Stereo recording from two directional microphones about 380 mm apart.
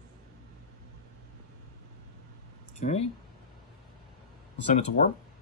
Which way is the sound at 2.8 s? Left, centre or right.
Centre.